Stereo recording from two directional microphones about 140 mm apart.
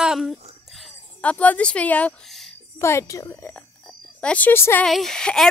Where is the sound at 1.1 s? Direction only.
10° left (ahead or behind).